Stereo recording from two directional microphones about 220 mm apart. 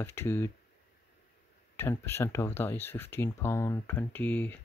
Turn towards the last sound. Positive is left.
turn(degrees=5)  # may be behind; listen again after turning